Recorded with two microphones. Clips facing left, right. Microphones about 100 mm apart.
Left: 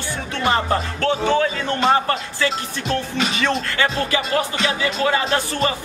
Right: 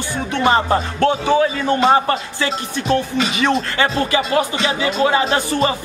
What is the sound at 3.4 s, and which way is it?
Speech, 20° right (ahead or behind).